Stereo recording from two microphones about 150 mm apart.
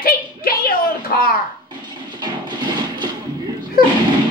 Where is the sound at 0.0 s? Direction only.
85° left.